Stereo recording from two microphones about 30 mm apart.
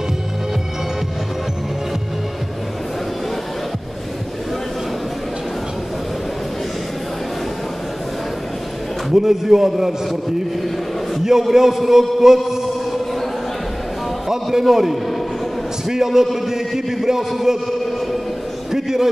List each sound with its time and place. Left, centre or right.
9.1 s a man's voice: centre
11.2 s a man's voice: centre
14.3 s a man's voice: centre
18.7 s a sound: centre